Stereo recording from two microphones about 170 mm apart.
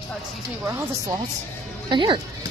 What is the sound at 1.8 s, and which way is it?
Speech, 30° right (ahead or behind).